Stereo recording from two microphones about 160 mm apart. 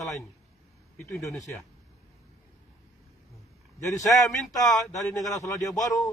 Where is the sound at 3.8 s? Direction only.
20° left (ahead or behind).